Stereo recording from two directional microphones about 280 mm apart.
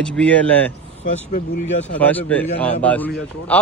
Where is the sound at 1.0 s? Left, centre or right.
Left.